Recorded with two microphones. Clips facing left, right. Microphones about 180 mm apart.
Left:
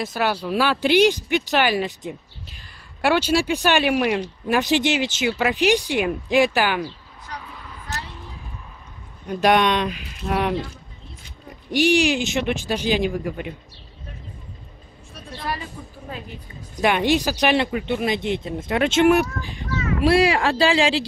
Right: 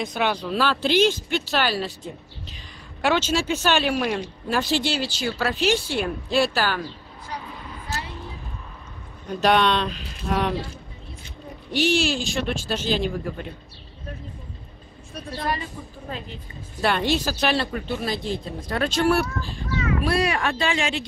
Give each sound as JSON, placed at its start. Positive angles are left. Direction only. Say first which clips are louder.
{"t": 0.0, "sound": "speech", "louder": "left 1 dB", "side_deg": 5}
{"t": 9.3, "sound": "speech", "louder": "left 2 dB", "side_deg": 10}
{"t": 11.7, "sound": "speech", "louder": "left 4 dB", "side_deg": 15}
{"t": 15.4, "sound": "a woman's voice", "louder": "right 1 dB", "side_deg": 5}
{"t": 16.8, "sound": "speech", "louder": "left 3 dB", "side_deg": 15}